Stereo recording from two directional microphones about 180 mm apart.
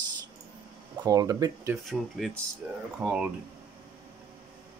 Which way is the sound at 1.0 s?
20° right (ahead or behind).